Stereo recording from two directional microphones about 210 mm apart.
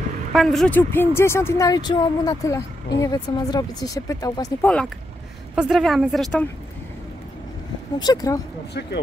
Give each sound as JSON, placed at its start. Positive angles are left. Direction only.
{"t": 0.3, "sound": "speech", "side_deg": 0}
{"t": 4.6, "sound": "a woman's voice", "side_deg": 5}
{"t": 8.0, "sound": "speech", "side_deg": 15}